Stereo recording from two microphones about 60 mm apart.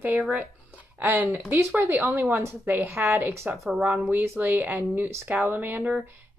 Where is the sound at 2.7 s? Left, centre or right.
Right.